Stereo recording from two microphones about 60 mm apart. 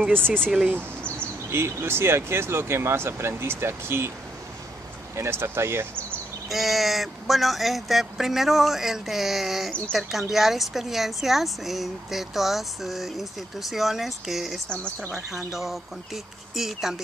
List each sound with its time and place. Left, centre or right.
0.5 s speech: centre
0.7 s speech: right
5.1 s speech: right
6.5 s speech: centre
9.7 s speech: centre
9.9 s speech: centre